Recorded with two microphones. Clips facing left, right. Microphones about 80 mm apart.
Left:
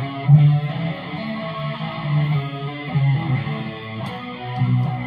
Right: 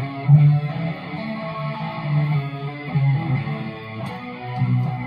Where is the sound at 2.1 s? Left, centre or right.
Left.